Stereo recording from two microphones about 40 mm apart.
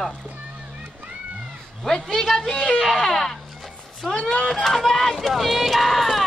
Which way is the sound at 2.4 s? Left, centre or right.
Left.